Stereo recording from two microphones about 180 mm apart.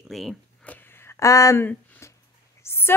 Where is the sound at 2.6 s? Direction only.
15° left (ahead or behind).